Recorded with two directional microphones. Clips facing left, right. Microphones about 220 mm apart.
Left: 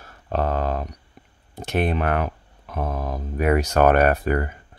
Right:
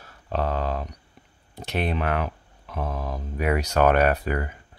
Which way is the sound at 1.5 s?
50° left (ahead or behind).